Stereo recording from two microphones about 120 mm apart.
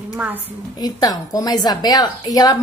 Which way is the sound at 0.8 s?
30° left (ahead or behind).